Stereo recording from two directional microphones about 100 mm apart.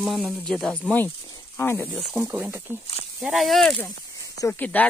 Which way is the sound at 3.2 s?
Centre (ahead or behind).